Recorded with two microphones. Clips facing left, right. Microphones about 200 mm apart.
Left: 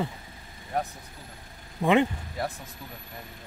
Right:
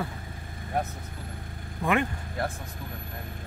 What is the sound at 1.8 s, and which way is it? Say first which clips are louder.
Speech: left 4 dB; 20° left (ahead or behind).